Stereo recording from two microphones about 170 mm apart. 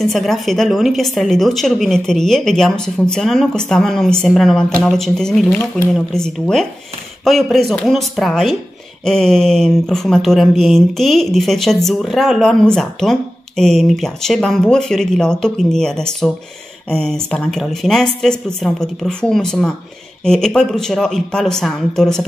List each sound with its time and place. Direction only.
0.0 s speech: centre (ahead or behind)